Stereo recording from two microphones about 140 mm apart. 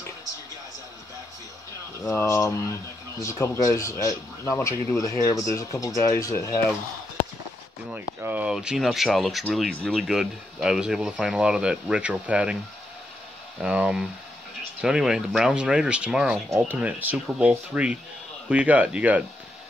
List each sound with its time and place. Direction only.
2.0 s speech: 20° left (ahead or behind)
7.9 s speech: 15° right (ahead or behind)
13.6 s speech: 5° right (ahead or behind)
16.4 s speech: 20° right (ahead or behind)